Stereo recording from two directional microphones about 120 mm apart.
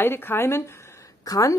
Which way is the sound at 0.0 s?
20° left (ahead or behind).